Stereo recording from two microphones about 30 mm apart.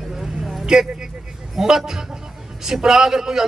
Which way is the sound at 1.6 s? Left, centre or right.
Centre.